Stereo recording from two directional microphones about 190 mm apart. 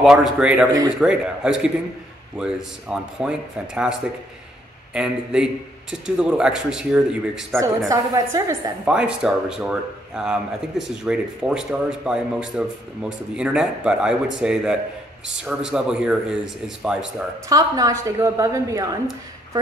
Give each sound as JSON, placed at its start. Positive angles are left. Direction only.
{"t": 0.0, "sound": "a man's voice", "side_deg": -5}
{"t": 7.9, "sound": "a woman's voice", "side_deg": -15}
{"t": 8.9, "sound": "a man's voice", "side_deg": -5}
{"t": 17.5, "sound": "a woman's voice", "side_deg": -20}